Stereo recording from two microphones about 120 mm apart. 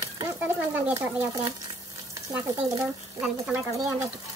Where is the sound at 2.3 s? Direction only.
20° right (ahead or behind).